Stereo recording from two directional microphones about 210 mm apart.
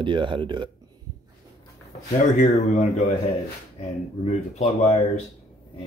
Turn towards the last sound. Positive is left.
turn(degrees=35)  # may be behind; listen again after turning